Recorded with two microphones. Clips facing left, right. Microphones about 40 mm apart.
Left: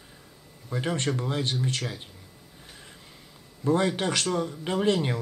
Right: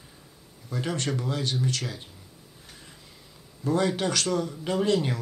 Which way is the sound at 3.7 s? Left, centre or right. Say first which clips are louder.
Even; left.